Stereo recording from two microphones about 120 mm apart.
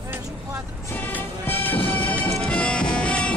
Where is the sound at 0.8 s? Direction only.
15° left (ahead or behind).